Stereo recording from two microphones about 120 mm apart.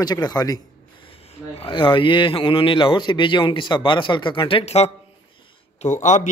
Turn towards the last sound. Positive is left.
turn(degrees=85)